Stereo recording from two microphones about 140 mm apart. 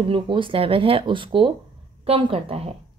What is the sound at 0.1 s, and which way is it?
Speech, 35° right (ahead or behind).